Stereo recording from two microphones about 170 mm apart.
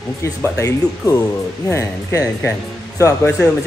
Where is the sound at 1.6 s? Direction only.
15° left (ahead or behind).